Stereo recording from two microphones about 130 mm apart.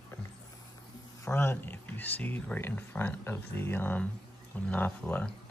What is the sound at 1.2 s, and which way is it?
Speech, 15° left (ahead or behind).